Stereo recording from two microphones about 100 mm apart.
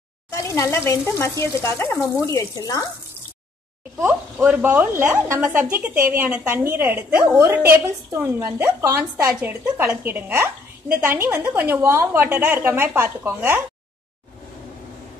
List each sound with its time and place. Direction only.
0.3 s speech: 30° left (ahead or behind)
4.0 s a woman's voice: 15° right (ahead or behind); by 9.0 s 30° right (ahead or behind)
9.4 s a woman's voice: 20° right (ahead or behind)